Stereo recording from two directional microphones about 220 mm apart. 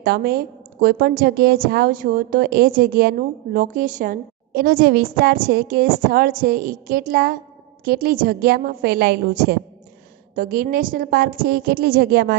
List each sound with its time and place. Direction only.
0.0 s a woman's voice: 45° right (ahead or behind)